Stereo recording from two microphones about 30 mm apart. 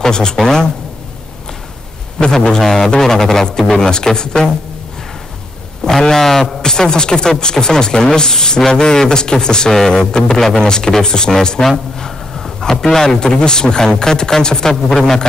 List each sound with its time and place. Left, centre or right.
0.1 s speech: left
2.6 s speech: centre
5.9 s speech: centre
12.0 s a sound: centre
13.4 s speech: left